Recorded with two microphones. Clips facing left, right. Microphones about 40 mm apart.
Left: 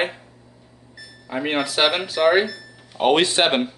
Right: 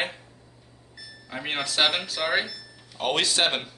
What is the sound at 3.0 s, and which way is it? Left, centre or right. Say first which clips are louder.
Speech: left 7 dB; left.